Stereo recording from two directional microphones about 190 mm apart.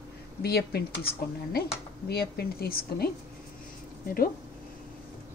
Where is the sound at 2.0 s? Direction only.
55° left (ahead or behind).